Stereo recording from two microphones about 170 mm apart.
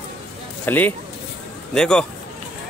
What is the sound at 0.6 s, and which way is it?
Speech, 10° left (ahead or behind).